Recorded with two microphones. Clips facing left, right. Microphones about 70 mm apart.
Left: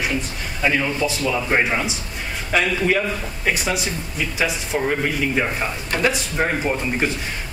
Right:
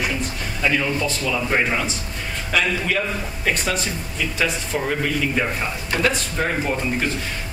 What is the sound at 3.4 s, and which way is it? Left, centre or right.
A man's voice, centre.